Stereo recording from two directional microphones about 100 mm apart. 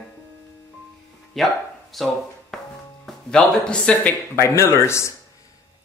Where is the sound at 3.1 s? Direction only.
5° left (ahead or behind).